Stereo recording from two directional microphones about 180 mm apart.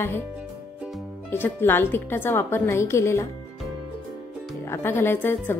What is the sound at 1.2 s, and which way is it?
A woman's voice, 10° left (ahead or behind).